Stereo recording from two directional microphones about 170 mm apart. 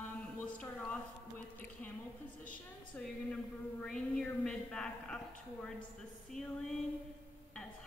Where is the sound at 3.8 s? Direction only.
5° left (ahead or behind).